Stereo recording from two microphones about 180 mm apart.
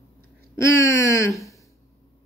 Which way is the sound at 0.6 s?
15° left (ahead or behind).